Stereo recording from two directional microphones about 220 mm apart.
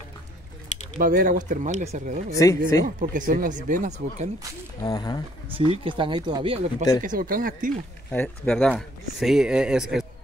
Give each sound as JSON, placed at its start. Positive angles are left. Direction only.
{"t": 0.9, "sound": "speech", "side_deg": -40}
{"t": 2.3, "sound": "speech", "side_deg": 15}
{"t": 3.0, "sound": "speech", "side_deg": -35}
{"t": 4.8, "sound": "speech", "side_deg": 15}
{"t": 5.6, "sound": "speech", "side_deg": -25}
{"t": 7.0, "sound": "speech", "side_deg": -40}
{"t": 8.1, "sound": "speech", "side_deg": 5}